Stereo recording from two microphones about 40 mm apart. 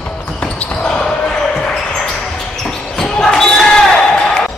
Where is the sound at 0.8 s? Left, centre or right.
Left.